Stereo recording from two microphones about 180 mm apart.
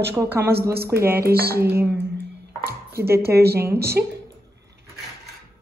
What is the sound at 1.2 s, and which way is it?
Speech, 60° right (ahead or behind).